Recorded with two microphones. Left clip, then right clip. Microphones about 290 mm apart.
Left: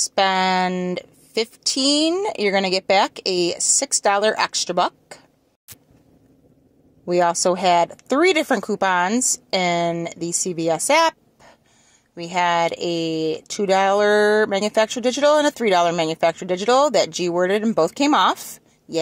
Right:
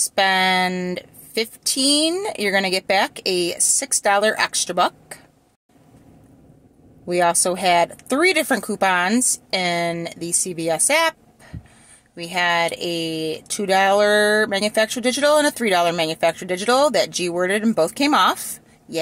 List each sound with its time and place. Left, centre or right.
0.0 s speech: centre
7.1 s speech: centre